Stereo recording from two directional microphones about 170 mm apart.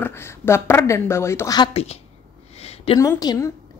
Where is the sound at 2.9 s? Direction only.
20° left (ahead or behind).